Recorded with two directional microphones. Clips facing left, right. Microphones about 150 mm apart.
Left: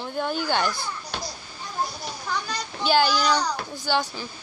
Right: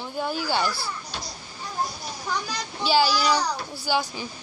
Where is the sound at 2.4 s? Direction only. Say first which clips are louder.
Left 1 dB; 5° right (ahead or behind).